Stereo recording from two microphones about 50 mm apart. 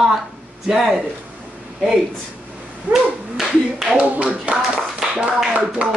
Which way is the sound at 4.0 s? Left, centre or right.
Right.